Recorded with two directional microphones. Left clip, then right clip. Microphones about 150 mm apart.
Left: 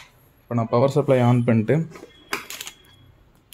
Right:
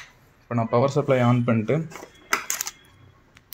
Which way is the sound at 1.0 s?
40° left (ahead or behind).